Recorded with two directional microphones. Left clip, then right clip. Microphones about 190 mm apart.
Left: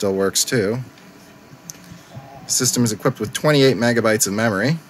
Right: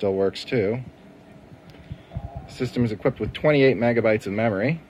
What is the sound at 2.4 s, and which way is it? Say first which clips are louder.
Speech: left 7 dB; 25° left (ahead or behind).